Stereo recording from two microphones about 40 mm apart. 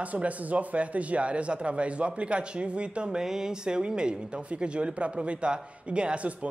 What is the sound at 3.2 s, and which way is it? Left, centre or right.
Speech, centre.